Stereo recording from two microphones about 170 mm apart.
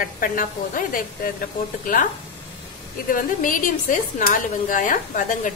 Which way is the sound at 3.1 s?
50° left (ahead or behind).